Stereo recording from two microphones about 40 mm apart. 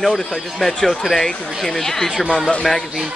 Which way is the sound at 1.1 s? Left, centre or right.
Centre.